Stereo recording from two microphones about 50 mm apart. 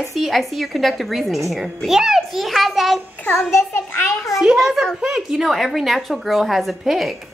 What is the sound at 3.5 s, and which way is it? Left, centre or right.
Speech, left.